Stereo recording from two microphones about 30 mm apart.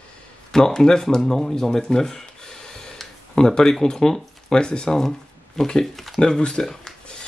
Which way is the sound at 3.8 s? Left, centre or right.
Centre.